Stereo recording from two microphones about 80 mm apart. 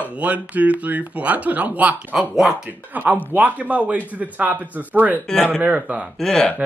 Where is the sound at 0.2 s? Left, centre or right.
Centre.